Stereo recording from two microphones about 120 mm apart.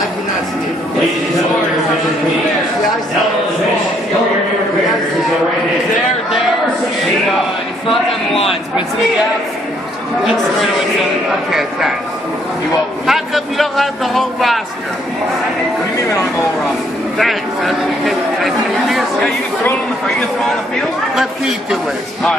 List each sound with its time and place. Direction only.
7.9 s a sound: centre (ahead or behind)
10.2 s speech: centre (ahead or behind)
13.0 s speech: centre (ahead or behind)
16.1 s speech: 25° left (ahead or behind)
17.2 s speech: centre (ahead or behind)
21.2 s speech: 5° right (ahead or behind)